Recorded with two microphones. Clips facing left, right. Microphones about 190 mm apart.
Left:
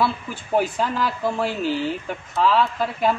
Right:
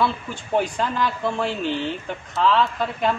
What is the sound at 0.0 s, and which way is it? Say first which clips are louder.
Speech: even; 5° left (ahead or behind).